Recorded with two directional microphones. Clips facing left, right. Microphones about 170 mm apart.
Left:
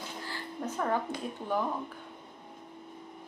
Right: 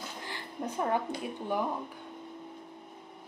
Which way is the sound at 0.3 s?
15° right (ahead or behind).